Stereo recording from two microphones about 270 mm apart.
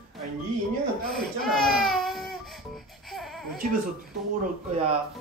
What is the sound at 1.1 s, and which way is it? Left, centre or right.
Baby cry, centre.